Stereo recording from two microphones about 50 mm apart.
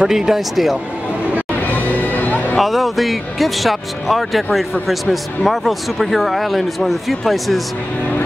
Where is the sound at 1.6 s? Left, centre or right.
Left.